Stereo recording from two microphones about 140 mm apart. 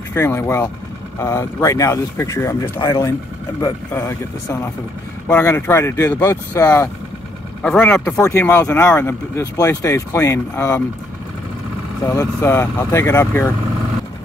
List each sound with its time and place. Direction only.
0.1 s speech: 20° left (ahead or behind)
7.6 s speech: 5° left (ahead or behind)
8.0 s speech: 20° left (ahead or behind)
12.1 s speech: 20° left (ahead or behind)